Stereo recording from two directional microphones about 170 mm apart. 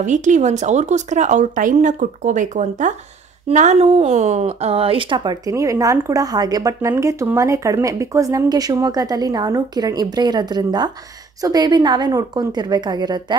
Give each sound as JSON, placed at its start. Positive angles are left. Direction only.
{"t": 0.0, "sound": "speech", "side_deg": -45}